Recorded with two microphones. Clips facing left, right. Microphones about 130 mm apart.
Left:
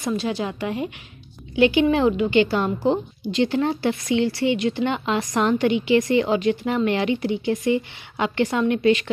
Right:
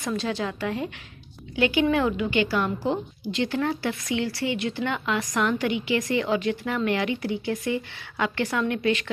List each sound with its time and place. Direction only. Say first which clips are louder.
0.0 s a woman's voice: left 3 dB; 15° left (ahead or behind)